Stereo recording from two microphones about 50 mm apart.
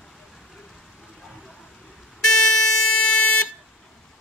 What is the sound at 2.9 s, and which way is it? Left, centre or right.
Vehicle, left.